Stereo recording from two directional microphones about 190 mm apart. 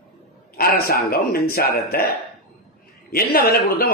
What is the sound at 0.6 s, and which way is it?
A man's voice, 50° left (ahead or behind).